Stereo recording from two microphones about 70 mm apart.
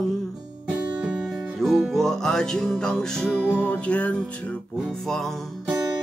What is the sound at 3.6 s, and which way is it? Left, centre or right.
Music, left.